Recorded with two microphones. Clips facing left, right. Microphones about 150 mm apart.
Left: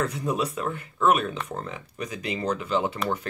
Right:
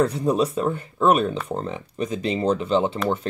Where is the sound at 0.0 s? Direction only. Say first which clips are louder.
Right 7 dB; 30° right (ahead or behind).